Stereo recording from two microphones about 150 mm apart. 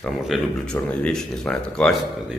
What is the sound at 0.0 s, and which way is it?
Speech, 5° left (ahead or behind).